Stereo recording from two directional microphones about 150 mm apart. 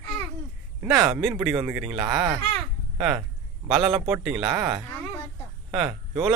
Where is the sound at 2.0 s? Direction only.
30° right (ahead or behind).